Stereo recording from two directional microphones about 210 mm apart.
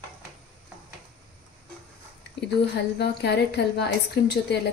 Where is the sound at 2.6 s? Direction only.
50° left (ahead or behind).